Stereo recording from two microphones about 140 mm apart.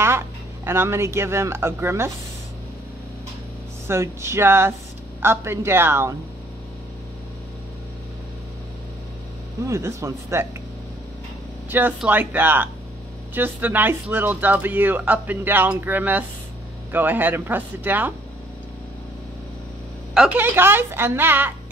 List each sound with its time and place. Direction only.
0.7 s speech: 20° right (ahead or behind)
3.8 s speech: 20° right (ahead or behind)
9.7 s speech: 20° right (ahead or behind)
12.0 s speech: 15° right (ahead or behind)
20.2 s speech: 15° right (ahead or behind)